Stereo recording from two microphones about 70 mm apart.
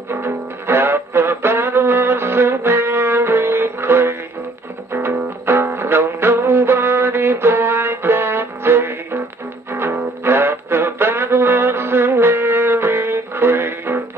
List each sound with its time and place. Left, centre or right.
0.1 s music: right